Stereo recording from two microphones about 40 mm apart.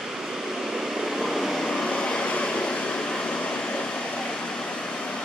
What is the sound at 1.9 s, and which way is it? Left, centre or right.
Vehicle, left.